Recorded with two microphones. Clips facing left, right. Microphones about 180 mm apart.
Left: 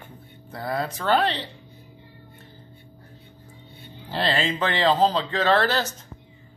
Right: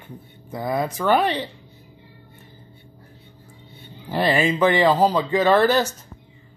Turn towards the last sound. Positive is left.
turn(degrees=-15)  # may be behind; listen again after turning